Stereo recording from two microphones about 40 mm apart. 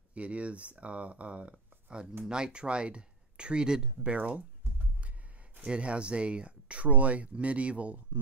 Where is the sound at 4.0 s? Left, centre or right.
Right.